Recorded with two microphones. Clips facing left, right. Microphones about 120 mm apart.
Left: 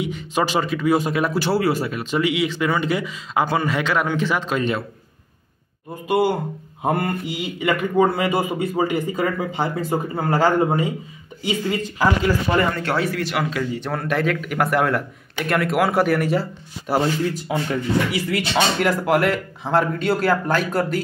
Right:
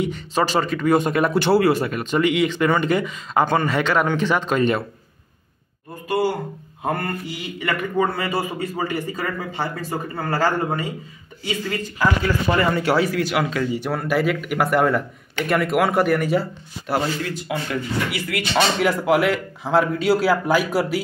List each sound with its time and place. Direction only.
0.1 s speech: 15° left (ahead or behind)
6.0 s a man's voice: 20° left (ahead or behind)
12.7 s speech: 5° right (ahead or behind)
17.5 s speech: 25° left (ahead or behind)
18.8 s speech: centre (ahead or behind)